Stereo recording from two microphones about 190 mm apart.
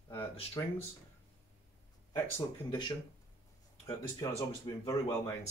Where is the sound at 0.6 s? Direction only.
15° left (ahead or behind).